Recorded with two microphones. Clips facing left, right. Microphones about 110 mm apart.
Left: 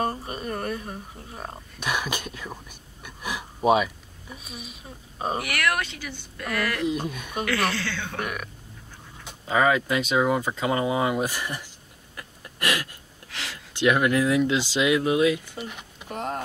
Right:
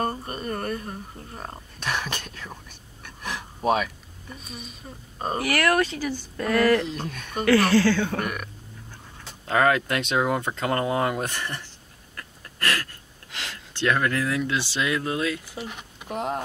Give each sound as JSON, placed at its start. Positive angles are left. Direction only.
{"t": 0.0, "sound": "speech", "side_deg": 0}
{"t": 5.4, "sound": "speech", "side_deg": -35}
{"t": 6.8, "sound": "speech", "side_deg": 5}
{"t": 7.4, "sound": "speech", "side_deg": -35}
{"t": 8.2, "sound": "speech", "side_deg": 0}
{"t": 12.2, "sound": "a sound", "side_deg": 15}
{"t": 13.7, "sound": "speech", "side_deg": 15}
{"t": 16.1, "sound": "speech", "side_deg": -5}